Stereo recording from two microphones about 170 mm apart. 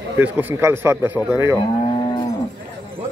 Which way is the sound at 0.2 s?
10° right (ahead or behind).